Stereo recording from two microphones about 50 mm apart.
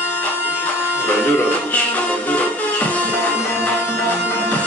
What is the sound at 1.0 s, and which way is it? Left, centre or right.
Music, left.